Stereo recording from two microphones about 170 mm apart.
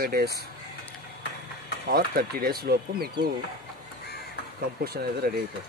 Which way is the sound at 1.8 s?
60° right (ahead or behind).